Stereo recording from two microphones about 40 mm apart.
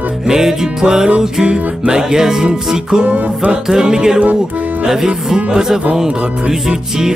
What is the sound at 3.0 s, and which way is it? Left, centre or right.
Music, right.